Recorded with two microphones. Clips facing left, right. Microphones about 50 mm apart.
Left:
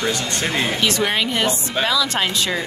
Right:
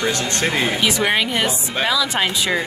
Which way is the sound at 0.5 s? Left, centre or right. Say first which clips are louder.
Left 1 dB; centre.